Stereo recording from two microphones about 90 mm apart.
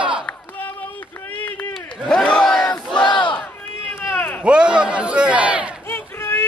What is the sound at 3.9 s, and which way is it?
Run, 20° left (ahead or behind).